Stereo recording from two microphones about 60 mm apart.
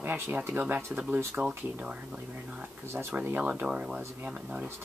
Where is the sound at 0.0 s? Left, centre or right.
Right.